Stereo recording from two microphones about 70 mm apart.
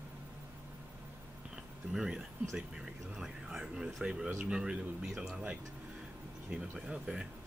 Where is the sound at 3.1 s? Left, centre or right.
Centre.